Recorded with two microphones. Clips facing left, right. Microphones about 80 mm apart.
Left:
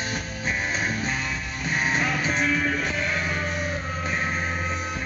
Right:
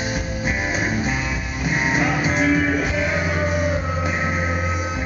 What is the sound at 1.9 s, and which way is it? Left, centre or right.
Music, centre.